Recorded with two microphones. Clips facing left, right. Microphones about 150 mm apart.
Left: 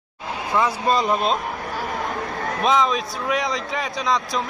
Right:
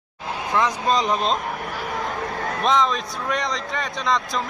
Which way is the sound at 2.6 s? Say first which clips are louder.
Left 1 dB; 5° left (ahead or behind).